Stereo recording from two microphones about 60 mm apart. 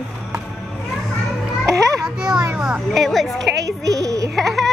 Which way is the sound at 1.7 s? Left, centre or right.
Right.